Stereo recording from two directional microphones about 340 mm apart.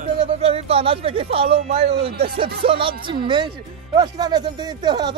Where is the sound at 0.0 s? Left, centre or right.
Centre.